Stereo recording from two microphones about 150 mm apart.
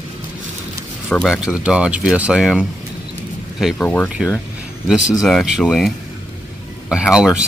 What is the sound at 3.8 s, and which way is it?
Speech, 10° left (ahead or behind).